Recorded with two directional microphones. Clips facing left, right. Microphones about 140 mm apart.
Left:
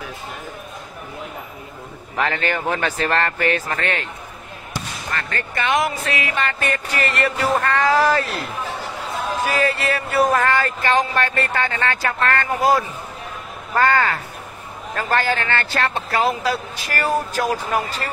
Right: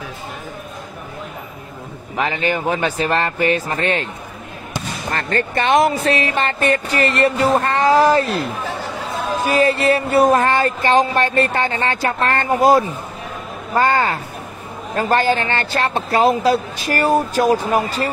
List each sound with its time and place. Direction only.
2.1 s speech: 15° right (ahead or behind)
5.1 s music: 30° right (ahead or behind)
9.4 s music: 25° right (ahead or behind)